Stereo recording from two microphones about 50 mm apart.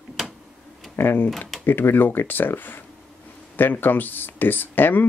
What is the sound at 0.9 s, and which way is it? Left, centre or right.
Speech, left.